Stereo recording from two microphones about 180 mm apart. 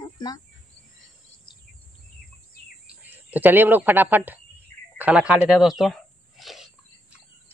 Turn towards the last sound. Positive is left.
turn(degrees=0)  # may be behind; listen again after turning